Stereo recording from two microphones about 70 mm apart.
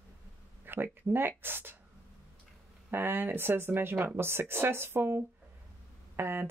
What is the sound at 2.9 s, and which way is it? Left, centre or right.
Speech, right.